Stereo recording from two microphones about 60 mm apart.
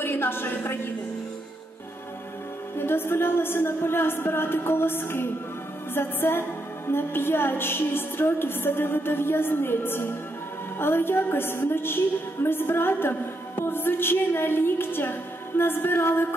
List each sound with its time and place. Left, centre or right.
0.0 s a woman's voice: left
2.8 s a woman's voice: left